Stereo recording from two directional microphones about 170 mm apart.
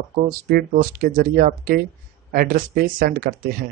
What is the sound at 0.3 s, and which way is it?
Speech, 60° right (ahead or behind).